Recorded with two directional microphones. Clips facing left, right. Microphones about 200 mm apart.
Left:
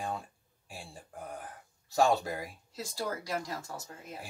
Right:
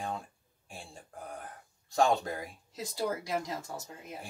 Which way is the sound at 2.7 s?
20° right (ahead or behind).